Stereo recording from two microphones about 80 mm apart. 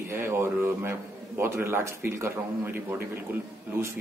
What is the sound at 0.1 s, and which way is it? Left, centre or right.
A man's voice, right.